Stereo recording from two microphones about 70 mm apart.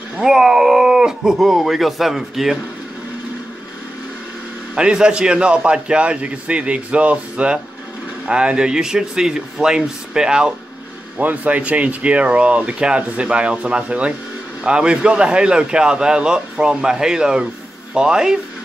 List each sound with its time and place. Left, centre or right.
0.2 s speech: centre
4.7 s speech: centre
11.1 s speech: right